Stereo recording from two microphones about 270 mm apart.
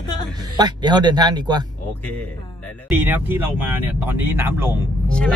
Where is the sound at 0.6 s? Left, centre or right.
Centre.